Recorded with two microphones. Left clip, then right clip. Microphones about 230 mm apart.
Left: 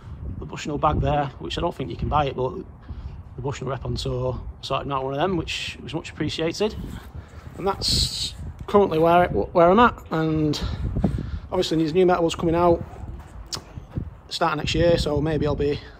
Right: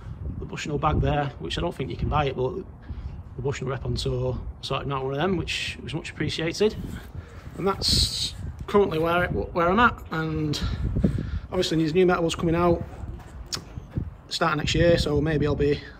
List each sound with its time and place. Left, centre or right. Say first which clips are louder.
0.5 s speech: left 3 dB; centre
13.5 s a sound: even; centre
14.3 s speech: left 1 dB; centre